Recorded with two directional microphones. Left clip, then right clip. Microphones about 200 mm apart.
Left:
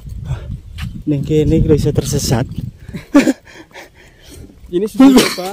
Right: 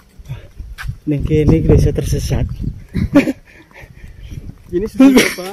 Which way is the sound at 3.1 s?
40° left (ahead or behind).